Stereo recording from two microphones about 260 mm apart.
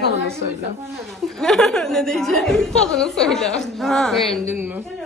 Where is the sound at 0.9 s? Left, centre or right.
Centre.